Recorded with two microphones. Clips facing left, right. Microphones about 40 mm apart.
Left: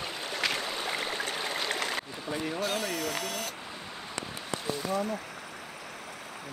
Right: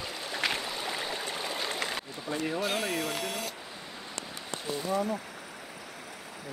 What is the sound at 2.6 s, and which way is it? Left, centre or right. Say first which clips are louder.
Speech: right 1 dB; right.